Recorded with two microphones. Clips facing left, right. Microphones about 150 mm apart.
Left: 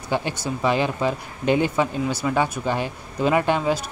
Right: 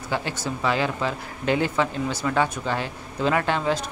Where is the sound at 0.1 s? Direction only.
15° left (ahead or behind).